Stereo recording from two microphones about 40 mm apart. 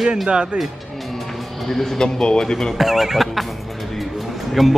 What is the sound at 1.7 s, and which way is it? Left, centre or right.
A man's voice, centre.